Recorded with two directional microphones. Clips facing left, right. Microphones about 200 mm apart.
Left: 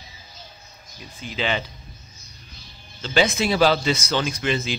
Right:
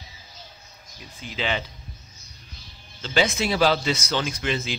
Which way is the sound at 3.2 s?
60° left (ahead or behind).